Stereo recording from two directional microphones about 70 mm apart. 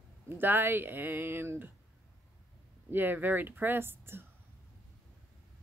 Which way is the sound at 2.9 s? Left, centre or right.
Right.